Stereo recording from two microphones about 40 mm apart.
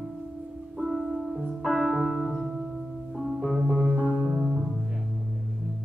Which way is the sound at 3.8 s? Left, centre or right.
Right.